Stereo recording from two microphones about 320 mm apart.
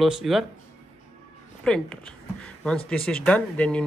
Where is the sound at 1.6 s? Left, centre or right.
Centre.